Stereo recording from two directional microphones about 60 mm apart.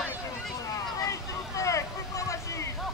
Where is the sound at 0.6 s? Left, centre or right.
Left.